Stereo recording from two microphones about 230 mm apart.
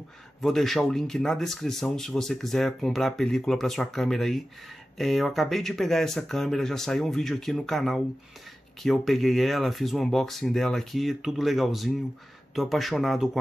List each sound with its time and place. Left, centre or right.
0.4 s speech: centre